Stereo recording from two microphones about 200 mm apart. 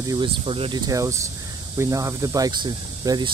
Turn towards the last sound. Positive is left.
turn(degrees=-20)  # may be behind; listen again after turning